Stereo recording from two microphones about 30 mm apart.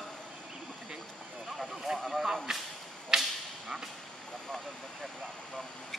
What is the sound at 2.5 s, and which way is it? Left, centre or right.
Whip, centre.